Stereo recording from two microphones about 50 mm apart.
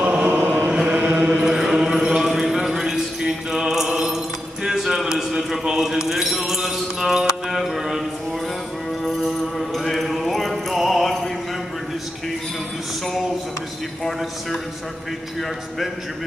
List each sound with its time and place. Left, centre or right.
0.3 s chant: right
0.7 s chant: centre
1.5 s clip-clop: centre
4.6 s a sound: centre
9.0 s music: centre
13.0 s a sound: centre